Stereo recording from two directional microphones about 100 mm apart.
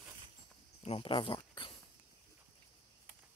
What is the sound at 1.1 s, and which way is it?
Dog, 55° left (ahead or behind).